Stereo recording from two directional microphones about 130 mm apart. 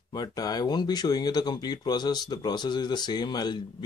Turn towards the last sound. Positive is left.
turn(degrees=35)  # may be behind; listen again after turning